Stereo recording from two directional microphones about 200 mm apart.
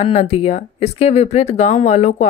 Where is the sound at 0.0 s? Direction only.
30° left (ahead or behind).